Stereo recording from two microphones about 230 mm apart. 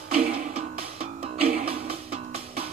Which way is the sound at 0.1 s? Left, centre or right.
Right.